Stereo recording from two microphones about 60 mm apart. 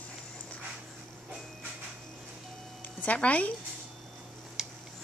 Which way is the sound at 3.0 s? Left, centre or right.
Left.